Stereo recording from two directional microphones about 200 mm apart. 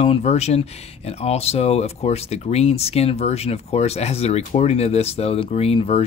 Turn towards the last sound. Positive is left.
turn(degrees=30)  # may be behind; listen again after turning